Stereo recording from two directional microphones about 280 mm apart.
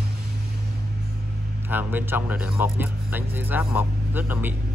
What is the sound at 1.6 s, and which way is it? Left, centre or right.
Speech, centre.